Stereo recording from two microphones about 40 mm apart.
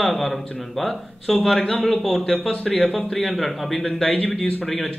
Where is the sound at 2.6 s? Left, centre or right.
Left.